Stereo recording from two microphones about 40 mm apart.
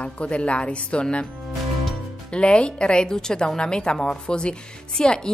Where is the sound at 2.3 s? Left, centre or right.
Left.